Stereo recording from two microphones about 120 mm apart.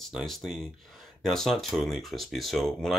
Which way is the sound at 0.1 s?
Centre (ahead or behind).